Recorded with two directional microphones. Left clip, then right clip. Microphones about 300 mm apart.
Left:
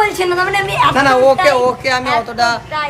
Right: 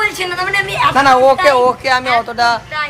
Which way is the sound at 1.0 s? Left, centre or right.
Centre.